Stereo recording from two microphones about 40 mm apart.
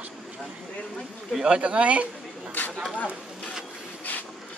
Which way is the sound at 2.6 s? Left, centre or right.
Left.